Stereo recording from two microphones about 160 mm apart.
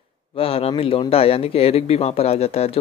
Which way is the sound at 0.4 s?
35° left (ahead or behind).